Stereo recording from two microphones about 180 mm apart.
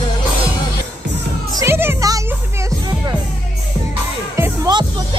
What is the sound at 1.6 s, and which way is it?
Music, 15° right (ahead or behind).